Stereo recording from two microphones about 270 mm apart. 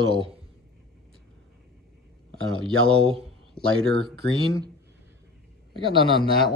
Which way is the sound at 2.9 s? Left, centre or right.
Right.